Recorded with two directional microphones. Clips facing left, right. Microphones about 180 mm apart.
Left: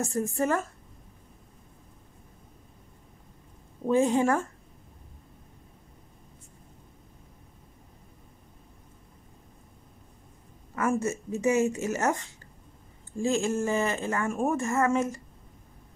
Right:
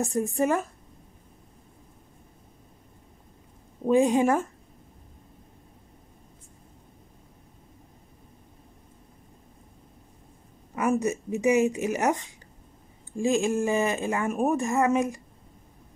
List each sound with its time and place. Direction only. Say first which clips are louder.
0.0 s speech: right 3 dB; 15° right (ahead or behind)
3.8 s speech: right 2 dB; 15° right (ahead or behind)
10.7 s speech: right 2 dB; 15° right (ahead or behind)